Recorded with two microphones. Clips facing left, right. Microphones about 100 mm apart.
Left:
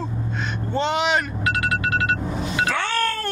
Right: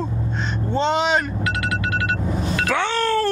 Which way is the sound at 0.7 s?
30° right (ahead or behind).